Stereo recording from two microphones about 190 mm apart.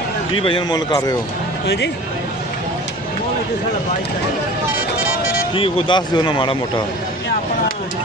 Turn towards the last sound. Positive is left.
turn(degrees=25)  # may be behind; listen again after turning